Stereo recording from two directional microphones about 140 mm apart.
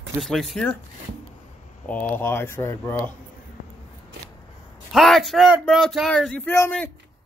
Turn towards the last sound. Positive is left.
turn(degrees=20)  # may be behind; listen again after turning